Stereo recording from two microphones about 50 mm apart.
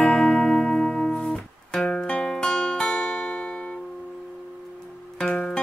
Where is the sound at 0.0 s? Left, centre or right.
Centre.